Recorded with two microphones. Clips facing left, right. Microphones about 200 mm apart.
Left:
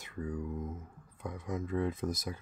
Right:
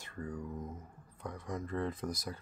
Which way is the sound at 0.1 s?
5° left (ahead or behind).